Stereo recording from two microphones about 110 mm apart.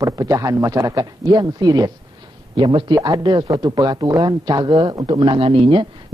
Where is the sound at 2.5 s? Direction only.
45° right (ahead or behind).